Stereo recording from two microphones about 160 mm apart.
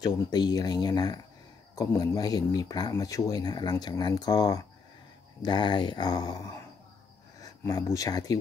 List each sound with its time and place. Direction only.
0.0 s speech: 25° left (ahead or behind)